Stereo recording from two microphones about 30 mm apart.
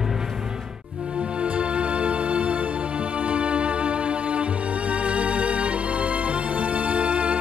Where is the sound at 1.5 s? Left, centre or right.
Right.